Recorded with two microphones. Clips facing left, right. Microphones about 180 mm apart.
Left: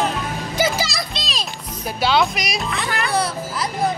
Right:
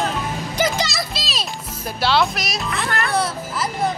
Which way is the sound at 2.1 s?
Centre (ahead or behind).